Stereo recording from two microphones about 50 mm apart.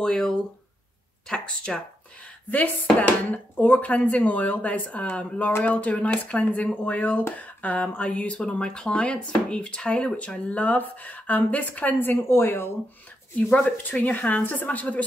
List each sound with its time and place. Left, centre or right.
0.0 s speech: centre
1.3 s speech: centre
2.5 s speech: left
12.3 s speech: left
13.8 s speech: left